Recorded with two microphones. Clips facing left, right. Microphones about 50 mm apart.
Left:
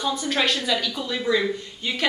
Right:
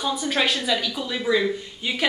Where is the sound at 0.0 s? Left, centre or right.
Centre.